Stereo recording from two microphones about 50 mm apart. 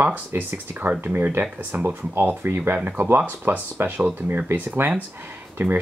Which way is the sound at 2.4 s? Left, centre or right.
Right.